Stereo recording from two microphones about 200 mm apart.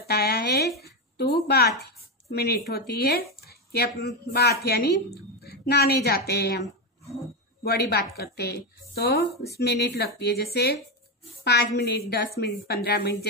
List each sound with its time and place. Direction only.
0.0 s a woman's voice: 50° left (ahead or behind)
1.8 s chopping: 55° left (ahead or behind)
3.3 s a woman's voice: 50° left (ahead or behind)
7.6 s a woman's voice: 50° left (ahead or behind)